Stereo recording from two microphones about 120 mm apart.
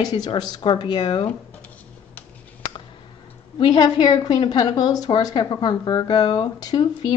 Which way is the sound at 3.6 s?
35° left (ahead or behind).